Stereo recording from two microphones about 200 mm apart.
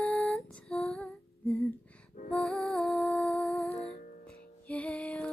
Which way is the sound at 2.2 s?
Centre (ahead or behind).